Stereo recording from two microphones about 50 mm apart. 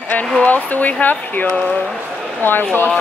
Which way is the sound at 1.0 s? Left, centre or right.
Left.